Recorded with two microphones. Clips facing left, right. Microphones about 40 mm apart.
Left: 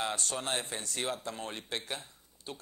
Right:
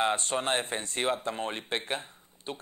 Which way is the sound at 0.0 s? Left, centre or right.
Right.